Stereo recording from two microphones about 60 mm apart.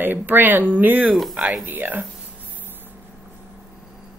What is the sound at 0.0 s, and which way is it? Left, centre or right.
Speech, right.